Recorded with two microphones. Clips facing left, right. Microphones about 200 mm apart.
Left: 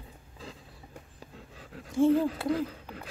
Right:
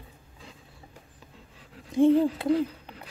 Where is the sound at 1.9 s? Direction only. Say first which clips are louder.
Right 3 dB; 20° right (ahead or behind).